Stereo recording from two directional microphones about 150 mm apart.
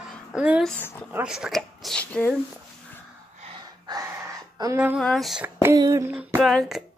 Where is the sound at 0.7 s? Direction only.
15° left (ahead or behind).